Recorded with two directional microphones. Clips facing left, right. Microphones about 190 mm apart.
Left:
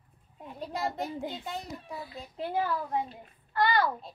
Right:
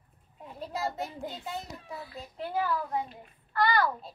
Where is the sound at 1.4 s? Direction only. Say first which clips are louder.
Left 1 dB; 5° right (ahead or behind).